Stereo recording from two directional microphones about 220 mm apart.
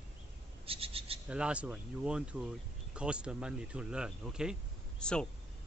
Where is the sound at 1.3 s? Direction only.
5° right (ahead or behind).